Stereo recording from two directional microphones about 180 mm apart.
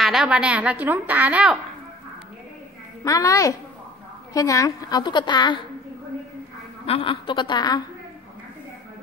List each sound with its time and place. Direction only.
0.0 s a woman's voice: 5° right (ahead or behind)
3.0 s a child's voice: 20° left (ahead or behind)
6.9 s a woman's voice: 30° left (ahead or behind)